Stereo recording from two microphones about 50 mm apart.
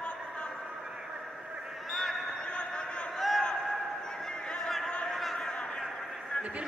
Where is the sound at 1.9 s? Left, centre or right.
Centre.